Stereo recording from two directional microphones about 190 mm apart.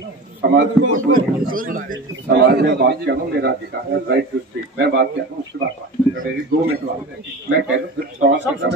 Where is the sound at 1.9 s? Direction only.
60° right (ahead or behind).